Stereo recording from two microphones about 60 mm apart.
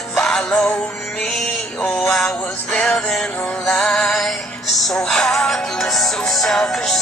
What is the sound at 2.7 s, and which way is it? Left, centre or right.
Music, centre.